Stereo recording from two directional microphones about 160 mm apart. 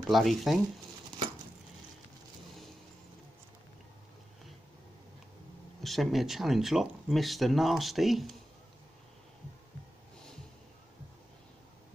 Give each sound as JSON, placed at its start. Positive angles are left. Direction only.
{"t": 0.1, "sound": "speech", "side_deg": 0}
{"t": 5.8, "sound": "speech", "side_deg": 0}